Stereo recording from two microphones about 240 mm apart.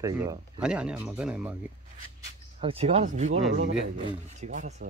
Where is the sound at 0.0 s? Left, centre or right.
Centre.